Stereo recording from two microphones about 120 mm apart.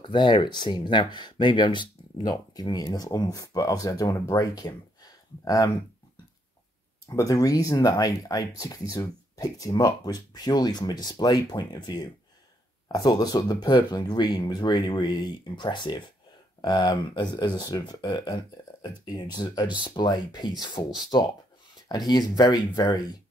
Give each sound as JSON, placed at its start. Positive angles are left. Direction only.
{"t": 0.0, "sound": "speech", "side_deg": 40}
{"t": 7.1, "sound": "speech", "side_deg": 30}